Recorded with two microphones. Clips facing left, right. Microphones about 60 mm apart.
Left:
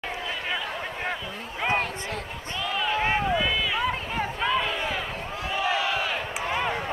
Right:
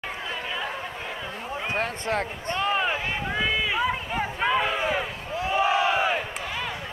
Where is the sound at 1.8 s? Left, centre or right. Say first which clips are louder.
Right 4 dB; right.